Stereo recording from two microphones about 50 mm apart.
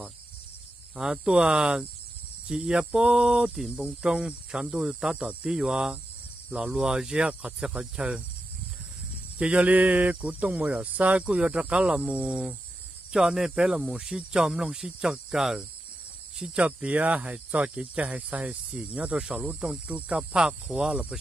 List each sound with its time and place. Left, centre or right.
0.9 s speech: centre
9.4 s speech: right; by 15.6 s centre
16.3 s speech: centre
18.5 s speech: centre
18.9 s speech: right
19.2 s speech: centre